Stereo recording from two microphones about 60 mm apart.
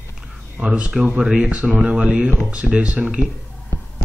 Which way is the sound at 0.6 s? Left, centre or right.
Centre.